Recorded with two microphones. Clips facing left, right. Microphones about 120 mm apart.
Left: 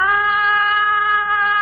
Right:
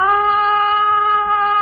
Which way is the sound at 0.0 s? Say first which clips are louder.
Right 4 dB; 40° right (ahead or behind).